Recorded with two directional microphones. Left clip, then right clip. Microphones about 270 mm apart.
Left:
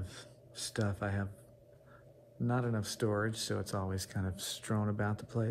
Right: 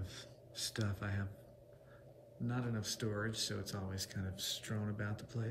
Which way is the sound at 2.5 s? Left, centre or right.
Centre.